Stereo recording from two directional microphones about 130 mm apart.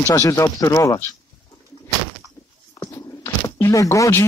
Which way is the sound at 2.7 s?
25° left (ahead or behind).